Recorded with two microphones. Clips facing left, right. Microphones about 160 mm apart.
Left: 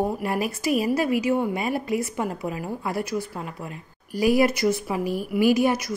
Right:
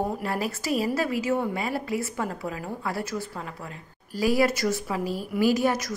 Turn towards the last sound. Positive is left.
turn(degrees=15)  # may be behind; listen again after turning